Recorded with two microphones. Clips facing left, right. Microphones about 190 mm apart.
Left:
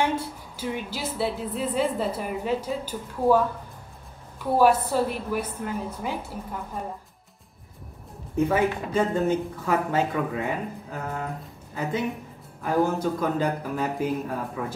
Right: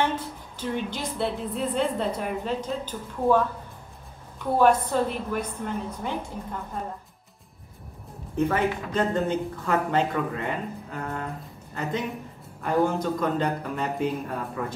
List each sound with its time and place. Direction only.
0.0 s a woman's voice: 10° left (ahead or behind)
8.4 s a woman's voice: 10° left (ahead or behind)